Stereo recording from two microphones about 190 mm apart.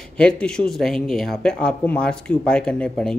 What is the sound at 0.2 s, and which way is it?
Speech, 5° left (ahead or behind).